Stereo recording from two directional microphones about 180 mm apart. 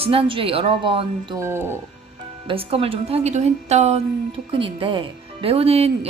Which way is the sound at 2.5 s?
30° right (ahead or behind).